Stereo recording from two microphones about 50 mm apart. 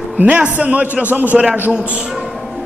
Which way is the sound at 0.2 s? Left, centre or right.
Right.